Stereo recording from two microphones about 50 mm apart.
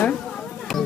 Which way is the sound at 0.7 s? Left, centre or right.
Centre.